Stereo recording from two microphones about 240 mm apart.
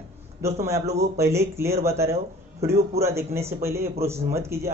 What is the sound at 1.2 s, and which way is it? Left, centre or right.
Speech, centre.